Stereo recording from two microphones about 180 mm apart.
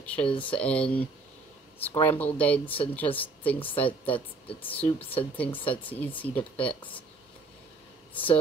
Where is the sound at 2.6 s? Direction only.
30° left (ahead or behind).